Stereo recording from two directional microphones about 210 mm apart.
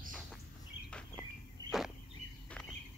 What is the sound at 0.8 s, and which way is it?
Bird, 5° left (ahead or behind).